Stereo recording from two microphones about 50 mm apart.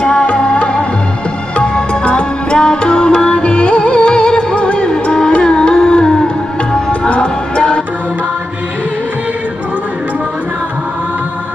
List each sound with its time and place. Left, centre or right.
0.0 s music: left